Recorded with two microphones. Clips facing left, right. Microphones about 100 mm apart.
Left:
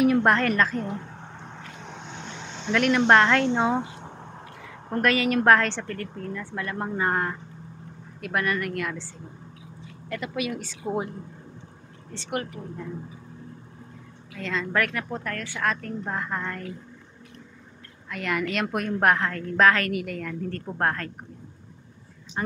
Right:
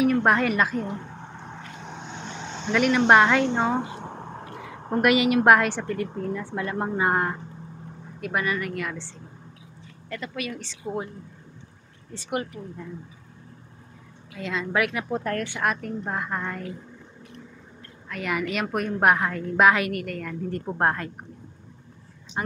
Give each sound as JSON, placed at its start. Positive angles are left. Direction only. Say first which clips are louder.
{"t": 0.0, "sound": "a woman's voice", "louder": "even", "side_deg": 0}
{"t": 2.7, "sound": "speech", "louder": "right 1 dB", "side_deg": -5}
{"t": 4.9, "sound": "a woman's voice", "louder": "right 3 dB", "side_deg": -15}
{"t": 8.2, "sound": "speech", "louder": "even", "side_deg": -5}
{"t": 12.1, "sound": "speech", "louder": "right 1 dB", "side_deg": -5}
{"t": 14.3, "sound": "a woman's voice", "louder": "even", "side_deg": -5}
{"t": 18.1, "sound": "a woman's voice", "louder": "even", "side_deg": -5}
{"t": 19.9, "sound": "speech", "louder": "left 1 dB", "side_deg": 0}
{"t": 20.4, "sound": "a woman's voice", "louder": "right 3 dB", "side_deg": -15}